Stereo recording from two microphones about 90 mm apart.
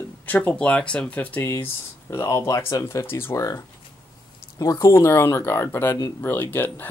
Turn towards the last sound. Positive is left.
turn(degrees=20)  # may be behind; listen again after turning